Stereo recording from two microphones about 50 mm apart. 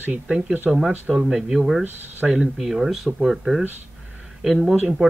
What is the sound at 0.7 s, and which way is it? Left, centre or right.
Speech, centre.